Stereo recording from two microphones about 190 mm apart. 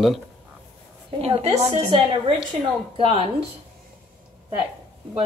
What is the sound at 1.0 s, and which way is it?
Speech, 30° right (ahead or behind).